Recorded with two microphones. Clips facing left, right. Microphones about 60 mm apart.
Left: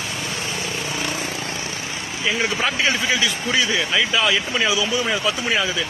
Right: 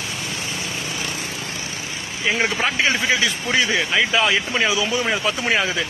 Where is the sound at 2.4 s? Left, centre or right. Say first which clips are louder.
Even; right.